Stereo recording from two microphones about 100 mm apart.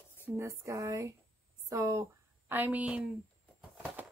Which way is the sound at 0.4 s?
30° right (ahead or behind).